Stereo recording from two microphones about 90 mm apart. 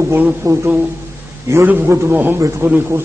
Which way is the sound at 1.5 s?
25° right (ahead or behind).